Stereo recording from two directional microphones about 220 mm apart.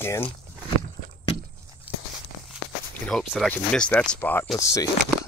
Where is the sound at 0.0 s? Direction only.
10° left (ahead or behind).